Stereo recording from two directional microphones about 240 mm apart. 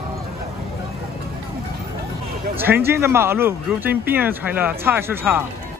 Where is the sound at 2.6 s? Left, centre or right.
Centre.